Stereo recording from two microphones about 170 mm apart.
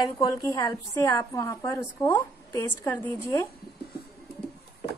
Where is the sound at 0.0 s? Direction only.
20° left (ahead or behind).